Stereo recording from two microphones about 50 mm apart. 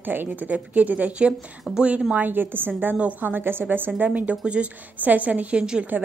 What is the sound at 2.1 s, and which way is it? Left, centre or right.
A woman's voice, right.